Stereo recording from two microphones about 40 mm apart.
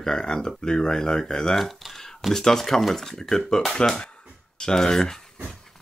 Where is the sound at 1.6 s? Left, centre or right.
Centre.